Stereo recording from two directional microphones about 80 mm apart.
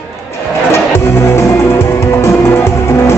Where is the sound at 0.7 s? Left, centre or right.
Left.